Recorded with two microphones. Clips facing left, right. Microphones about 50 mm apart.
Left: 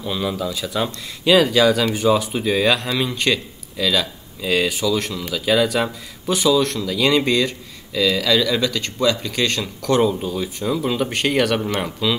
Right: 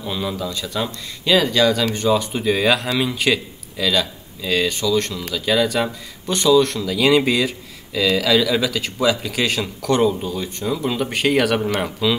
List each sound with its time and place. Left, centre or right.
0.0 s speech: centre